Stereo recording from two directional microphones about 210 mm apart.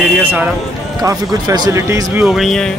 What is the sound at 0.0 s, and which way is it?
Speech, 5° right (ahead or behind).